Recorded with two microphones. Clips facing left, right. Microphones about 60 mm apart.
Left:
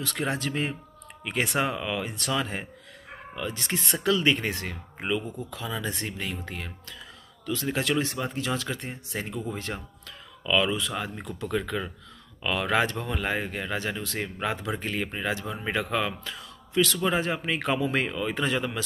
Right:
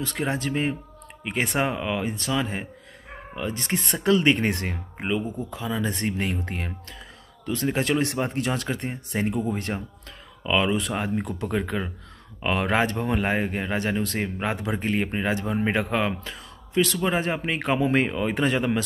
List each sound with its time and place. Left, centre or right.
0.0 s speech: right
1.7 s speech: centre; by 4.7 s right
4.9 s speech: centre
8.0 s speech: right
9.7 s speech: centre
10.4 s speech: right